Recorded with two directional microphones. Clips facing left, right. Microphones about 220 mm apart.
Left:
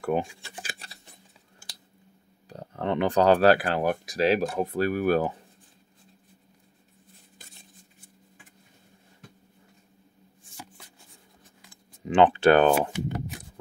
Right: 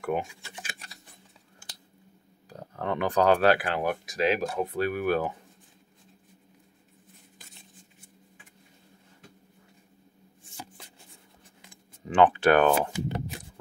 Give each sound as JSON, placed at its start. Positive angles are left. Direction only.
{"t": 0.0, "sound": "a sound", "side_deg": 35}
{"t": 2.5, "sound": "speech", "side_deg": 30}
{"t": 12.1, "sound": "speech", "side_deg": 25}